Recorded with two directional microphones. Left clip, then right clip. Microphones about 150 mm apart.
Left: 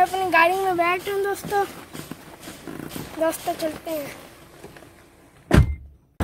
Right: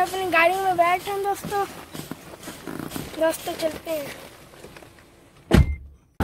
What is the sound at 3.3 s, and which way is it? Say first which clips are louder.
Speech: right 1 dB; 15° left (ahead or behind).